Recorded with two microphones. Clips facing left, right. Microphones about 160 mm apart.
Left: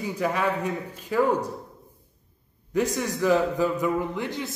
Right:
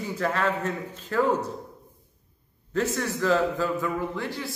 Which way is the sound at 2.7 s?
15° left (ahead or behind).